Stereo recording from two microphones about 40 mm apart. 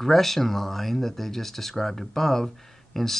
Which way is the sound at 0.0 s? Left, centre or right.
Centre.